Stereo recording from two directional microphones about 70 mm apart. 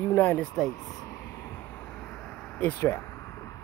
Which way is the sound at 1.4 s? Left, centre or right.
Left.